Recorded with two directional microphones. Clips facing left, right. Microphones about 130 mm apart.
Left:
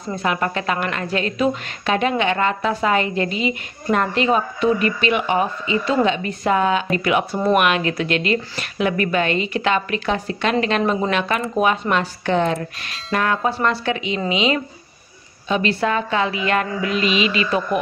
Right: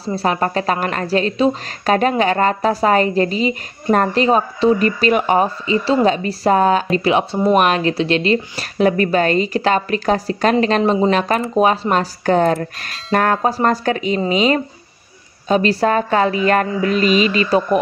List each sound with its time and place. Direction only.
0.0 s a woman's voice: 35° right (ahead or behind)
10.8 s a woman's voice: 20° right (ahead or behind)
11.1 s a woman's voice: 40° right (ahead or behind)